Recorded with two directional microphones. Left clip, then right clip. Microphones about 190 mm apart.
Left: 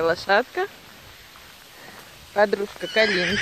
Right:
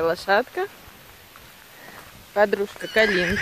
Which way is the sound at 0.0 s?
10° left (ahead or behind).